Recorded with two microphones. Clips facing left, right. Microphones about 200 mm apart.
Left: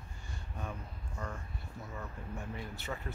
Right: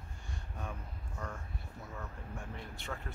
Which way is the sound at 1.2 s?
Centre (ahead or behind).